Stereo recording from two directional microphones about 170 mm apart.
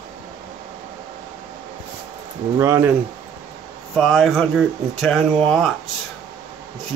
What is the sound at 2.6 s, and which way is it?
Speech, 15° right (ahead or behind).